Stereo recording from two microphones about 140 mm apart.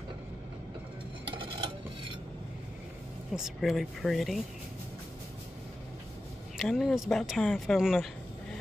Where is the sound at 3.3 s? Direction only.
Centre (ahead or behind).